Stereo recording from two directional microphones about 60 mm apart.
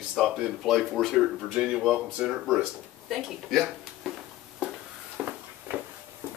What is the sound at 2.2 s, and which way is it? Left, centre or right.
Speech, right.